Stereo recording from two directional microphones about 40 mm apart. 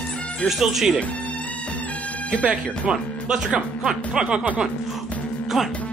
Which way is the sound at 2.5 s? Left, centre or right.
Right.